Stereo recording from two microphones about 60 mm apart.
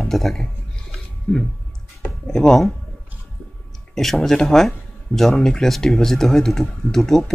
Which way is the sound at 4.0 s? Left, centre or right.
Centre.